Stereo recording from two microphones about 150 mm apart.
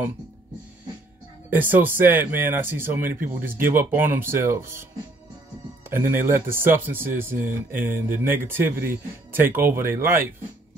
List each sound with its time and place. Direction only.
1.6 s speech: 10° right (ahead or behind)
5.9 s speech: 15° right (ahead or behind)